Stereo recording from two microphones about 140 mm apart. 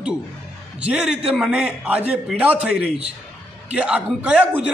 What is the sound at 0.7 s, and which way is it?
A man's voice, 5° right (ahead or behind).